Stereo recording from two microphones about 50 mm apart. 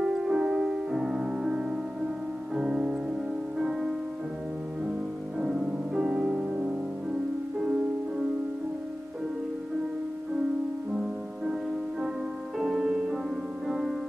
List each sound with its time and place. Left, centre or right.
0.0 s music: centre
5.4 s music: centre
10.9 s music: centre
12.5 s music: centre